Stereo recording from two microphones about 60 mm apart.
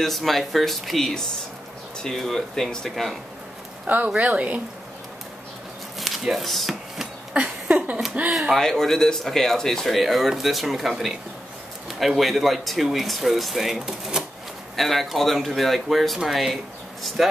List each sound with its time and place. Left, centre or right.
0.0 s speech: centre
3.8 s a woman's voice: right
5.9 s chopping: centre
7.3 s a sound: centre
8.3 s a sound: centre
8.5 s speech: centre